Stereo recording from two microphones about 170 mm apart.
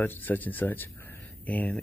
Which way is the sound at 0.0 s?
10° left (ahead or behind).